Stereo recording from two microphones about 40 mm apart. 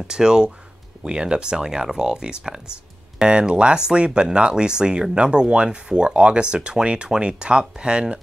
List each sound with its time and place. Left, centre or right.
0.1 s speech: centre